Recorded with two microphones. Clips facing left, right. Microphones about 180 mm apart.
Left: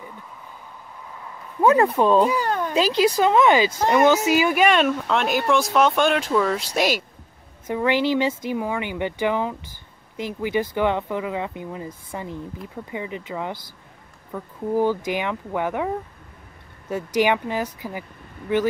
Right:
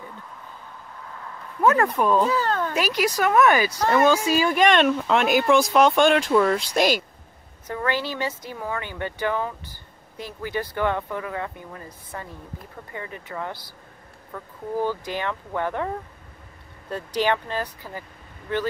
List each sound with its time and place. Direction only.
1.0 s a sound: 10° left (ahead or behind)
2.0 s a woman's voice: 25° left (ahead or behind)
2.2 s a sound: 15° left (ahead or behind)
2.7 s speech: 25° left (ahead or behind); by 7.0 s 5° left (ahead or behind)
7.6 s a woman's voice: 20° left (ahead or behind)
17.2 s speech: 10° left (ahead or behind)